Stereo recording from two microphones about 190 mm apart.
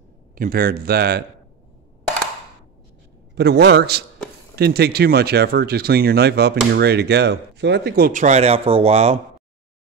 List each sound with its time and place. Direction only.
0.4 s speech: 50° right (ahead or behind)
3.3 s speech: 60° right (ahead or behind); by 9.2 s 35° right (ahead or behind)